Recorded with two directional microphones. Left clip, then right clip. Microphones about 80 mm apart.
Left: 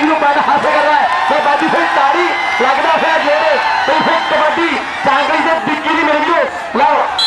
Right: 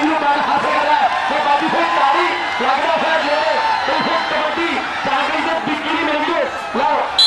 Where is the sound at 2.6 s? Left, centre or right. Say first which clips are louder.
Left 4 dB; left.